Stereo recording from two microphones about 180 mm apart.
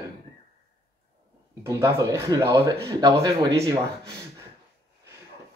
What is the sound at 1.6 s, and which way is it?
Speech, 15° right (ahead or behind).